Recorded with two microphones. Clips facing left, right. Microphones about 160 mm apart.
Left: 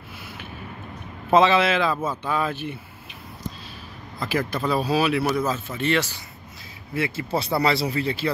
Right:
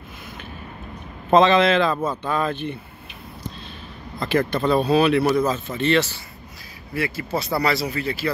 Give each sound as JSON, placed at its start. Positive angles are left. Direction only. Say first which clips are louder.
{"t": 1.3, "sound": "speech", "louder": "right 3 dB", "side_deg": 10}
{"t": 4.2, "sound": "speech", "louder": "right 4 dB", "side_deg": 5}
{"t": 6.9, "sound": "speech", "louder": "even", "side_deg": 25}